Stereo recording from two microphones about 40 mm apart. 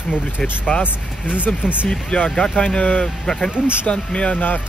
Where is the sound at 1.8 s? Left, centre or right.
Left.